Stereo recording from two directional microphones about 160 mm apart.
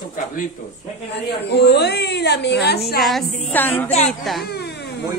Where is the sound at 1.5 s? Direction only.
90° left.